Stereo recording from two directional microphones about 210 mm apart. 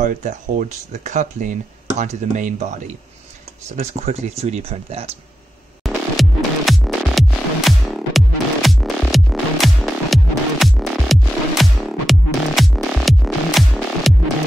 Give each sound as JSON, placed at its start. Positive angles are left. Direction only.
{"t": 0.0, "sound": "speech", "side_deg": -35}
{"t": 5.9, "sound": "music", "side_deg": 0}